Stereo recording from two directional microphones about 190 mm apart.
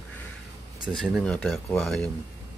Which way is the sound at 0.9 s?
Centre (ahead or behind).